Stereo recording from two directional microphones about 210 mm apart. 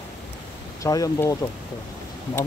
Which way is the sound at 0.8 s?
15° left (ahead or behind).